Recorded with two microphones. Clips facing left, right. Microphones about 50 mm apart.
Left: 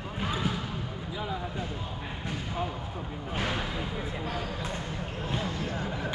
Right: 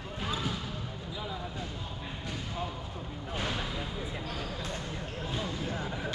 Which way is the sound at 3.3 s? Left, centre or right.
Left.